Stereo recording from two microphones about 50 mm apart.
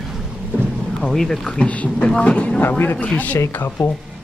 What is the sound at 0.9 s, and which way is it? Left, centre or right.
Speech, centre.